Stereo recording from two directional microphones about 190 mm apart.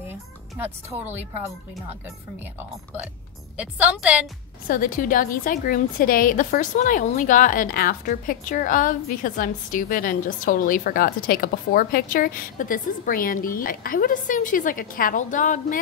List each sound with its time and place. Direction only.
3.5 s a woman's voice: 5° right (ahead or behind)
4.6 s a woman's voice: 45° left (ahead or behind)